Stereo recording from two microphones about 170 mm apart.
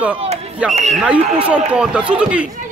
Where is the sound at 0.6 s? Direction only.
5° right (ahead or behind).